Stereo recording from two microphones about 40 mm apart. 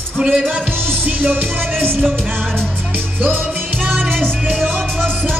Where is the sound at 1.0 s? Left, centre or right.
Right.